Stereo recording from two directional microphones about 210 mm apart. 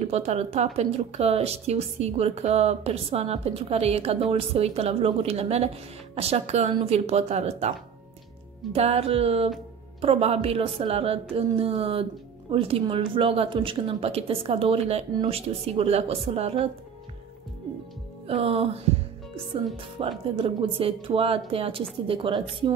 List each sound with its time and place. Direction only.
0.1 s a woman's voice: 30° right (ahead or behind)
8.7 s a woman's voice: 30° right (ahead or behind)
18.2 s a woman's voice: 25° right (ahead or behind)